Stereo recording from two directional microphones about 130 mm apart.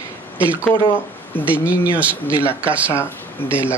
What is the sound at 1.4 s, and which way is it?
Speech, 10° right (ahead or behind).